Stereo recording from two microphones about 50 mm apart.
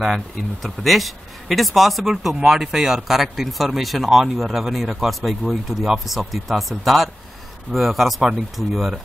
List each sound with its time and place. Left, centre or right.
0.0 s speech: centre